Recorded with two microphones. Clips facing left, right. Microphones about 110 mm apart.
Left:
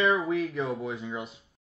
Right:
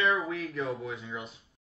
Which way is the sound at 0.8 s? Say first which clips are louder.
Left 4 dB; 30° left (ahead or behind).